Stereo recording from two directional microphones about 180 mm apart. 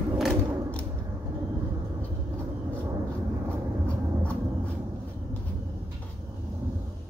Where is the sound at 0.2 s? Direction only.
5° left (ahead or behind).